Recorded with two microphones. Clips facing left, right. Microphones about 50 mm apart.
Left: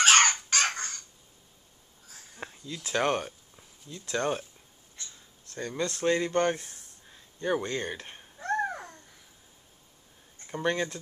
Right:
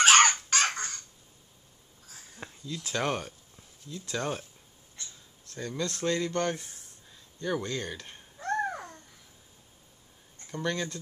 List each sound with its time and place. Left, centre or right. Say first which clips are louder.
0.0 s a sound: right 1 dB; centre
2.0 s a sound: even; centre
2.4 s speech: even; centre
5.5 s speech: left 2 dB; centre
7.1 s babbling: left 3 dB; left; by 9.0 s centre
10.4 s speech: left 3 dB; centre